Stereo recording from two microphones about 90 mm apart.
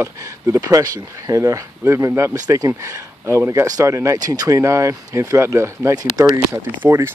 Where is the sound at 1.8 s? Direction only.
25° right (ahead or behind).